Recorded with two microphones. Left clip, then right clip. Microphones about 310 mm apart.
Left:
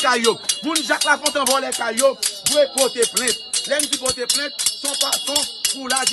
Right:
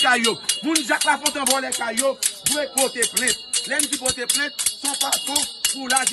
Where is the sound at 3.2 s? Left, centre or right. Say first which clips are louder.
Left 1 dB; centre.